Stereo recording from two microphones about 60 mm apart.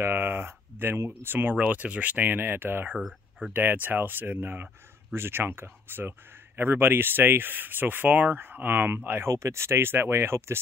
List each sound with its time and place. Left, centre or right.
0.0 s speech: right
1.7 s speech: right
3.0 s speech: centre
3.5 s speech: right
9.3 s speech: right